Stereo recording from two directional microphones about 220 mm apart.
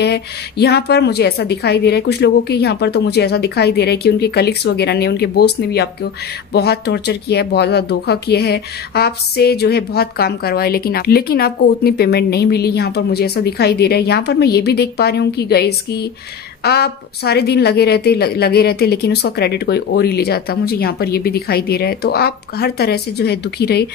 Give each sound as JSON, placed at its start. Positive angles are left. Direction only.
{"t": 0.0, "sound": "speech", "side_deg": 50}